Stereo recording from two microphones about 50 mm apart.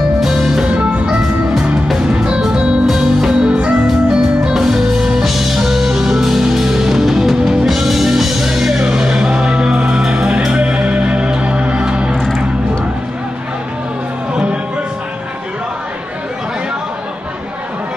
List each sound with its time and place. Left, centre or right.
0.2 s music: centre
0.7 s music: right
1.5 s music: centre
2.0 s music: centre
14.3 s music: right